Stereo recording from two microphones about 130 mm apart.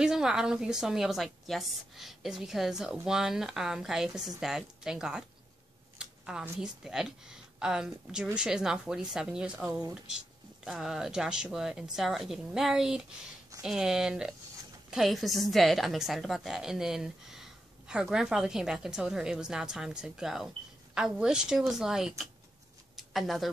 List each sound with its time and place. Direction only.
0.0 s a woman's voice: 5° right (ahead or behind)
9.7 s speech: 25° right (ahead or behind)
10.6 s a woman's voice: 5° right (ahead or behind)
22.9 s a sound: centre (ahead or behind)